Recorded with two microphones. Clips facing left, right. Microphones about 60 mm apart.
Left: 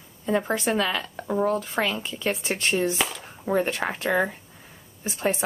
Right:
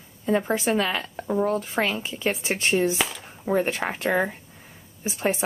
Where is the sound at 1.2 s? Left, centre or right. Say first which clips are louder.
Even; centre.